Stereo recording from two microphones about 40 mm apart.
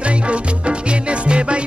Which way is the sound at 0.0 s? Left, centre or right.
Right.